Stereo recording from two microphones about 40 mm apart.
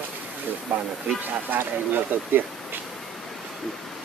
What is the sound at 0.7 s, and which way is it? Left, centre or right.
Speech, right.